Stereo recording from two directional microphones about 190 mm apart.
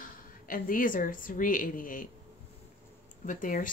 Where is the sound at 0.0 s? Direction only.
45° left (ahead or behind).